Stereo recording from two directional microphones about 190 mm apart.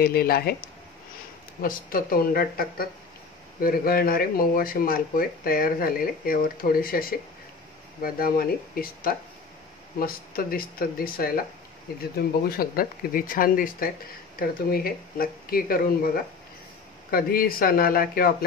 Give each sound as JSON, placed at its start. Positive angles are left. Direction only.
{"t": 0.0, "sound": "speech", "side_deg": 55}
{"t": 17.1, "sound": "speech", "side_deg": 50}